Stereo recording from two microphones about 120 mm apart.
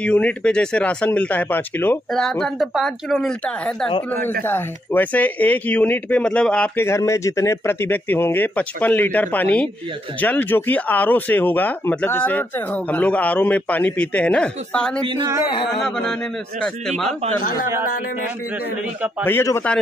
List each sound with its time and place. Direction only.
0.0 s speech: 10° left (ahead or behind)
2.1 s speech: 5° left (ahead or behind)
6.8 s speech: 25° left (ahead or behind)
15.0 s speech: 40° right (ahead or behind)
15.8 s speech: 5° left (ahead or behind)
19.2 s speech: 20° left (ahead or behind)